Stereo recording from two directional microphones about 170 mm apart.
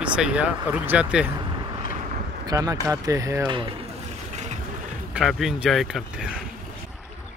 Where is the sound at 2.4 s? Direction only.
20° right (ahead or behind).